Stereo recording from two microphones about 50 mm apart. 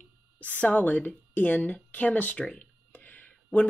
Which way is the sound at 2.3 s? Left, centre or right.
Centre.